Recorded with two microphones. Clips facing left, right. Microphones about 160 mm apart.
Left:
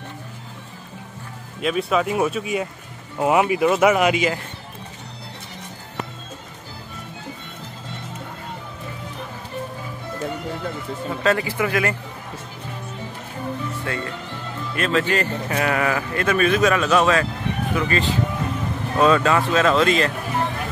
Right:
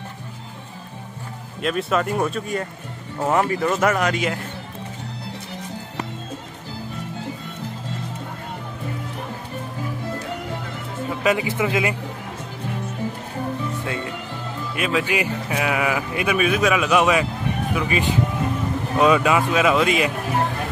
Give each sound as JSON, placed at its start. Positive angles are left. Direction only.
{"t": 1.6, "sound": "speech", "side_deg": 0}
{"t": 11.2, "sound": "speech", "side_deg": -15}
{"t": 13.7, "sound": "speech", "side_deg": -15}